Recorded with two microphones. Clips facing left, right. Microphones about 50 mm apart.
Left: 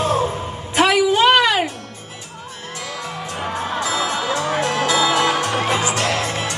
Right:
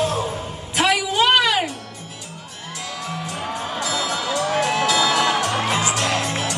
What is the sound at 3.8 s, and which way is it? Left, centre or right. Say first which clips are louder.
Music: left 2 dB; centre.